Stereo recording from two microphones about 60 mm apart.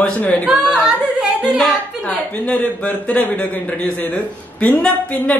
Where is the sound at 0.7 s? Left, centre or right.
Centre.